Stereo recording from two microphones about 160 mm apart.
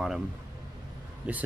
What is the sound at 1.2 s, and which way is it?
Speech, 5° right (ahead or behind).